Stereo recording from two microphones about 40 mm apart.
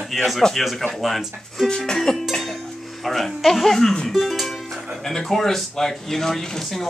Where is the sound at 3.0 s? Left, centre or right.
Centre.